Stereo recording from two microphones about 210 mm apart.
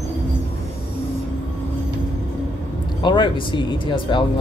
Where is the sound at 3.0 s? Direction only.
20° left (ahead or behind).